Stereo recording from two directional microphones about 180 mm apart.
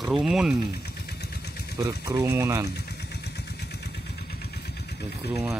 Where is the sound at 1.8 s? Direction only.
20° right (ahead or behind).